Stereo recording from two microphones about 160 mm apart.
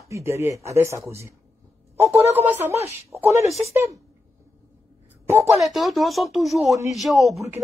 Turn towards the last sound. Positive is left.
turn(degrees=0)  # may be behind; listen again after turning